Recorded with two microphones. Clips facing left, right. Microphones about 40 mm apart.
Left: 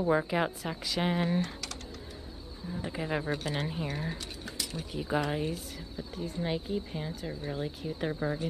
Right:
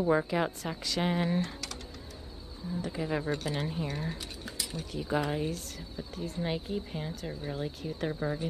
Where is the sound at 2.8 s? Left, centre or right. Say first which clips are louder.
Even; centre.